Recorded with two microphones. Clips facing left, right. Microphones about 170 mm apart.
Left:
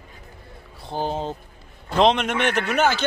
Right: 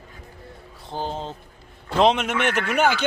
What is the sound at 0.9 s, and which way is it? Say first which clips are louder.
Speech: left 3 dB; 15° left (ahead or behind).